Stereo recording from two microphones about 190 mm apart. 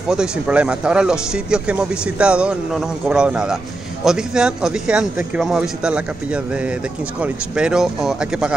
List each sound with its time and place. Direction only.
0.1 s speech: 5° right (ahead or behind)